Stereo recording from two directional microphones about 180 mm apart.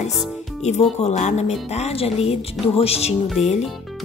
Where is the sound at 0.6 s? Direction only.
40° left (ahead or behind).